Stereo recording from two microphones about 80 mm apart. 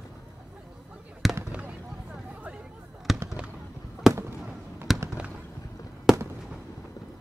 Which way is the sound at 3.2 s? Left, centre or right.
Centre.